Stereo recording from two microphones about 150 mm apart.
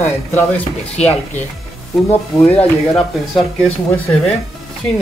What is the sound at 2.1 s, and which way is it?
Speech, 10° left (ahead or behind).